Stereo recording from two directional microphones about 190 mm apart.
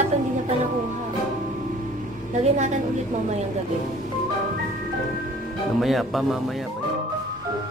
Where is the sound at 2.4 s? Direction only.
40° right (ahead or behind).